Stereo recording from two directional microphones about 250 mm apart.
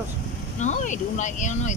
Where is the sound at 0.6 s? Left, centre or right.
Left.